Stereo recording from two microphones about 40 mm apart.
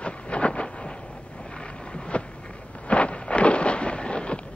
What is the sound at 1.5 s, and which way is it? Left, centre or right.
Boat, left.